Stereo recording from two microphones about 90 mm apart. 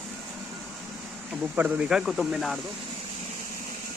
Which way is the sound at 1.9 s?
5° right (ahead or behind).